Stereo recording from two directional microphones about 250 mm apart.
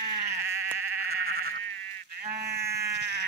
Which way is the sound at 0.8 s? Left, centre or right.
Right.